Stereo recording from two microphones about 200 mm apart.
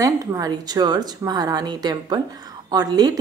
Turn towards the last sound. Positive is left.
turn(degrees=-20)  # may be behind; listen again after turning